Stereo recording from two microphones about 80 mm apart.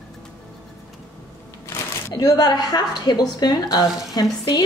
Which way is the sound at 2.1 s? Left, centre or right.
Left.